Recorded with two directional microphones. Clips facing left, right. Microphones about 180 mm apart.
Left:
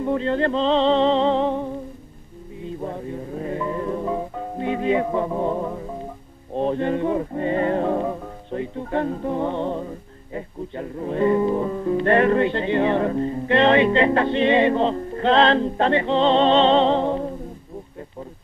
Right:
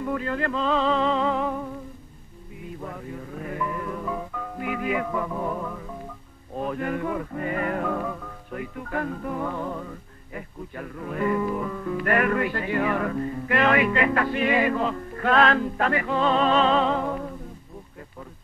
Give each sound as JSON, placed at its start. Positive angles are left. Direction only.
{"t": 0.0, "sound": "music", "side_deg": 25}